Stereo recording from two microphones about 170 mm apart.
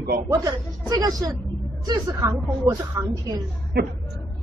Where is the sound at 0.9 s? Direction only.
20° right (ahead or behind).